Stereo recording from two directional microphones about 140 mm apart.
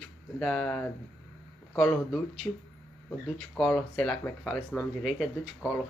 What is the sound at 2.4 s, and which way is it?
Speech, 15° left (ahead or behind).